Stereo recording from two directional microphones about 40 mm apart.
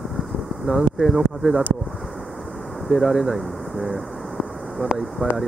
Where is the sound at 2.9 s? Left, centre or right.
Centre.